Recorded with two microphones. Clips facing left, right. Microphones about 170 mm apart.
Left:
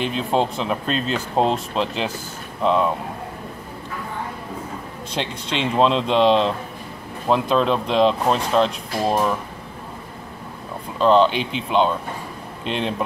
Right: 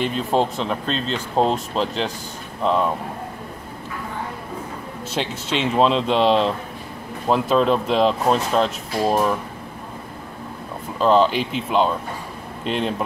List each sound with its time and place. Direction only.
0.3 s speech: centre (ahead or behind)
5.1 s speech: 5° right (ahead or behind)
11.0 s speech: 5° right (ahead or behind)